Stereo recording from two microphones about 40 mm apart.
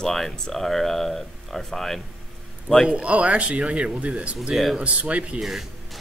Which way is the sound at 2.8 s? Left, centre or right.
Right.